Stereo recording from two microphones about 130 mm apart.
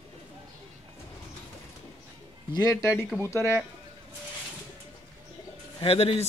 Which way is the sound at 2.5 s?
30° left (ahead or behind).